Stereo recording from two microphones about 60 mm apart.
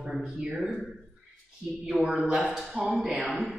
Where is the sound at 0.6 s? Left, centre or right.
Centre.